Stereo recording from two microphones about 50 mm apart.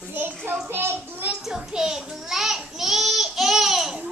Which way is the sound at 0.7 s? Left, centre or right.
Right.